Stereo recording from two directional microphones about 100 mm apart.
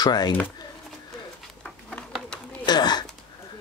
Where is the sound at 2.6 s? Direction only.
45° left (ahead or behind).